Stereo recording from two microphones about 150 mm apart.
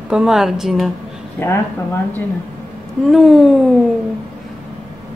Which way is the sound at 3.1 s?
Centre (ahead or behind).